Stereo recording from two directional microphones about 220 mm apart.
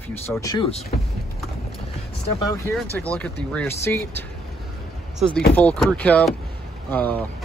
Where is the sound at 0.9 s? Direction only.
40° left (ahead or behind).